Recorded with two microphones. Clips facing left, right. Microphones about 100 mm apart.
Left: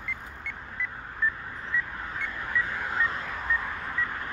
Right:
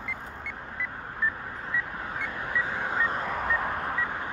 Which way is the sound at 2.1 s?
10° right (ahead or behind).